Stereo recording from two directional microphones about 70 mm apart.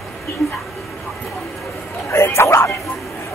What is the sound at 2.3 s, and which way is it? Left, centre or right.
Speech, left.